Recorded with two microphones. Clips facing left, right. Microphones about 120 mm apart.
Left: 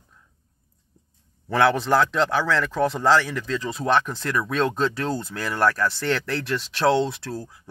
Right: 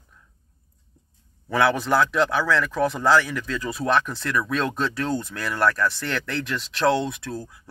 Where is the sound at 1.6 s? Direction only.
30° left (ahead or behind).